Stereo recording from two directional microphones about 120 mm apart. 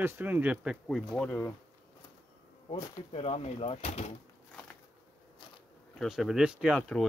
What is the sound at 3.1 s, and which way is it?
Speech, 55° left (ahead or behind).